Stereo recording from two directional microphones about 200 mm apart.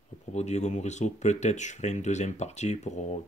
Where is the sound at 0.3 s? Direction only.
35° left (ahead or behind).